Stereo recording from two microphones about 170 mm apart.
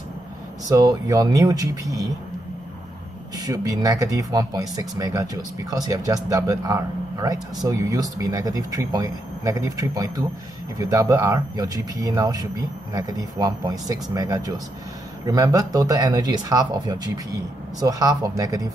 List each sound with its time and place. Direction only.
0.7 s speech: 20° right (ahead or behind)
3.3 s speech: 20° right (ahead or behind)